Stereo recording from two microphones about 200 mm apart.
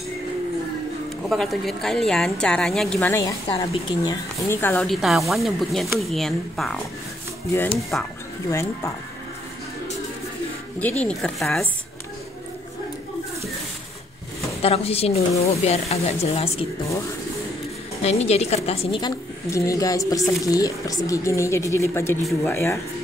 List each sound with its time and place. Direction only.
1.3 s speech: centre (ahead or behind)
3.4 s a woman's voice: 25° left (ahead or behind)
5.0 s a woman's voice: centre (ahead or behind); by 8.9 s 15° left (ahead or behind)
10.8 s speech: 5° left (ahead or behind)
14.6 s speech: 30° left (ahead or behind)
18.0 s a woman's voice: 35° left (ahead or behind); by 22.8 s 10° left (ahead or behind)